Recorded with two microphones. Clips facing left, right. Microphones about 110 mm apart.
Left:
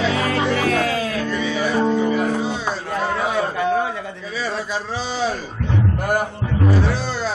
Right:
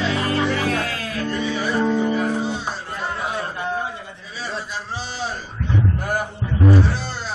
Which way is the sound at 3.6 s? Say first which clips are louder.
Left 8 dB; 90° left.